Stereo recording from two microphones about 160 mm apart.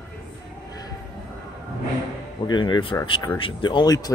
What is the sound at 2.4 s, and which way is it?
Speech, 30° left (ahead or behind).